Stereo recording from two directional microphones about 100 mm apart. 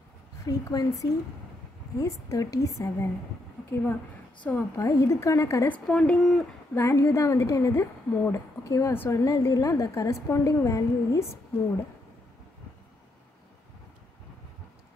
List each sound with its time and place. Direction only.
0.5 s a woman's voice: 35° left (ahead or behind)
3.7 s a woman's voice: 20° left (ahead or behind)
4.7 s a woman's voice: 30° left (ahead or behind)
5.9 s speech: 5° left (ahead or behind)
6.7 s a woman's voice: 25° left (ahead or behind)